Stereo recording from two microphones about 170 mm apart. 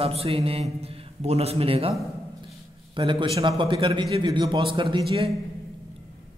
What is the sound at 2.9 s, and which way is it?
A man's voice, 30° right (ahead or behind).